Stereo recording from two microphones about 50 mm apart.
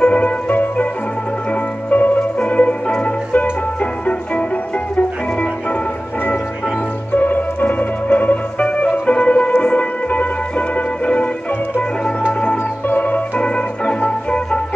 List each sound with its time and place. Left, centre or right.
0.0 s music: left
1.9 s music: left
7.2 s music: left
12.9 s organ: left
14.0 s music: left